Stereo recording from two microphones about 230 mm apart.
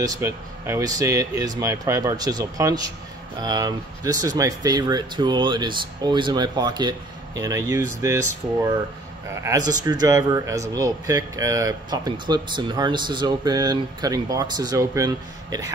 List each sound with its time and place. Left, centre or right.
0.0 s a man's voice: centre